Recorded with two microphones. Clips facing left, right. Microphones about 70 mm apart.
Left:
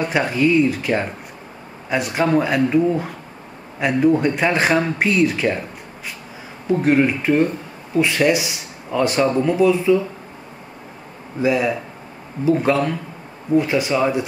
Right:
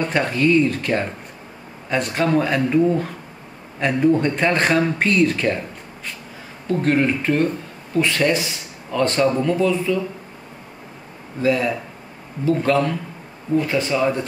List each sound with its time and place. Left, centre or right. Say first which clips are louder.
0.0 s speech: left 1 dB; centre
6.7 s speech: left 2 dB; centre
11.4 s speech: left 1 dB; centre